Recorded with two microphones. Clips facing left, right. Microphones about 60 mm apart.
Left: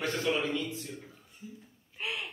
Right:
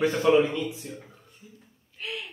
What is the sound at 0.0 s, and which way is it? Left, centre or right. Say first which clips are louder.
Speech: right 10 dB; centre.